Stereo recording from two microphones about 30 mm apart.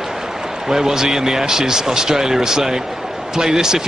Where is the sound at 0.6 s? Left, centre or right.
Centre.